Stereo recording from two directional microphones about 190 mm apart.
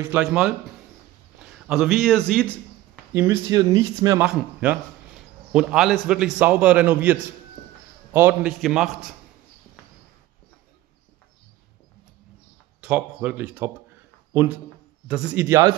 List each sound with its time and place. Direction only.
0.0 s a man's voice: 10° right (ahead or behind)
3.1 s speech: 15° right (ahead or behind)
4.2 s a man's voice: 10° right (ahead or behind)
12.8 s speech: 5° right (ahead or behind)
15.0 s speech: 5° right (ahead or behind)